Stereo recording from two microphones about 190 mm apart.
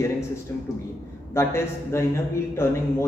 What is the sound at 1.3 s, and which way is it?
A man's voice, 15° left (ahead or behind).